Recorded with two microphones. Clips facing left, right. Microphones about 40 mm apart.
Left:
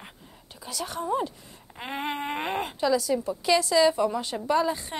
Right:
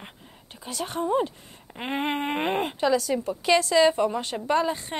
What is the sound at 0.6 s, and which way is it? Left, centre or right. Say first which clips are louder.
Speech: right 3 dB; right.